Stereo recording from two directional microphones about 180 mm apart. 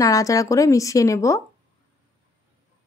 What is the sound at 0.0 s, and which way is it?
A woman's voice, 20° left (ahead or behind).